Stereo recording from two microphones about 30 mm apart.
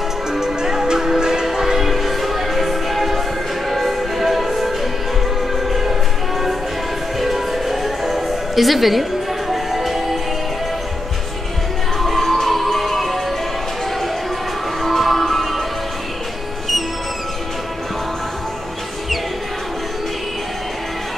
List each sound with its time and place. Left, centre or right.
0.3 s music: centre
7.2 s music: centre
12.0 s music: centre
14.8 s music: centre